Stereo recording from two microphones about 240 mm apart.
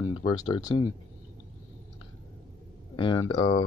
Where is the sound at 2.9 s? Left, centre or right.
Centre.